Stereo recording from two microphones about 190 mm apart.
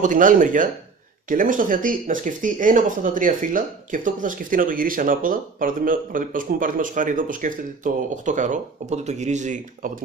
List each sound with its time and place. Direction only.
0.0 s speech: 45° right (ahead or behind)